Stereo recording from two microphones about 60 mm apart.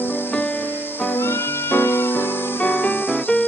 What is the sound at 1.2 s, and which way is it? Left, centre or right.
Music, left.